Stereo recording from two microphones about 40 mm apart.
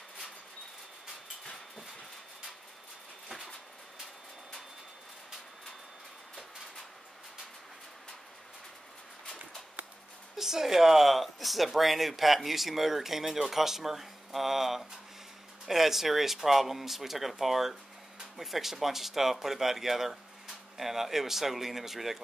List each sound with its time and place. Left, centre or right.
9.2 s walk: left
10.3 s speech: centre